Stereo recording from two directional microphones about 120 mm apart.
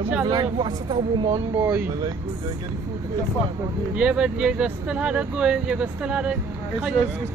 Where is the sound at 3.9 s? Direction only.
10° right (ahead or behind).